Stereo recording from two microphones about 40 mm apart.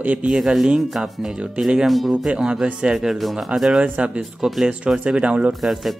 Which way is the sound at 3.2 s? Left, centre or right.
Centre.